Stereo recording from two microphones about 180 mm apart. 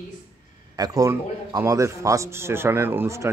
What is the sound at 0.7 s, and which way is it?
A man's voice, 20° right (ahead or behind).